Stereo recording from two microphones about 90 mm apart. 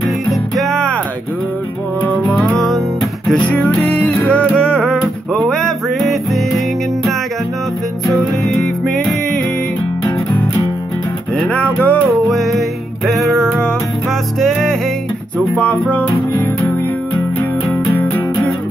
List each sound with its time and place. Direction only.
0.3 s music: centre (ahead or behind)
2.6 s music: centre (ahead or behind)
3.3 s music: 15° left (ahead or behind)
8.6 s music: 5° left (ahead or behind)
11.3 s music: 15° left (ahead or behind)
12.3 s music: centre (ahead or behind)
14.4 s music: 5° left (ahead or behind)
15.3 s music: 15° left (ahead or behind)